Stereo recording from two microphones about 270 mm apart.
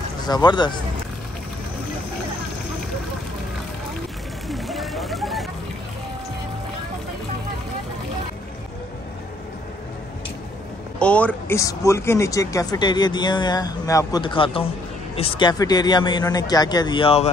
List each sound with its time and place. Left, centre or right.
0.3 s speech: centre
4.5 s a sound: centre
11.0 s speech: centre; by 17.3 s left